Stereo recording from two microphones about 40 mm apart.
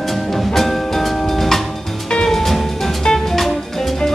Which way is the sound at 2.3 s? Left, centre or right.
Centre.